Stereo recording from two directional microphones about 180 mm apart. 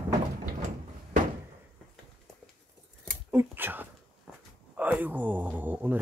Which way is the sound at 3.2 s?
10° right (ahead or behind).